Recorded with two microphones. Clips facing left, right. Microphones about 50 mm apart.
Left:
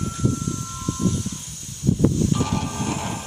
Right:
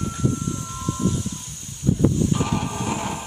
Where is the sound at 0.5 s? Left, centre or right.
Centre.